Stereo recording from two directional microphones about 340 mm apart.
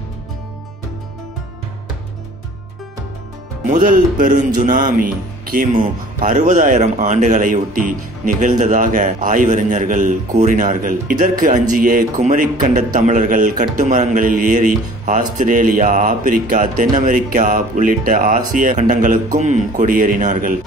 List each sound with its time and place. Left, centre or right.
3.7 s speech: right